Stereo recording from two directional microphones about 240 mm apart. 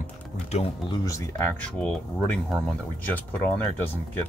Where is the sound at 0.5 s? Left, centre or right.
Left.